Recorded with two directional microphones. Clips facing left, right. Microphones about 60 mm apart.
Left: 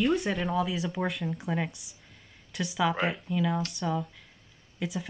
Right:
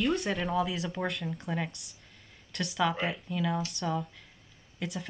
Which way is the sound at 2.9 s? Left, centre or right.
Left.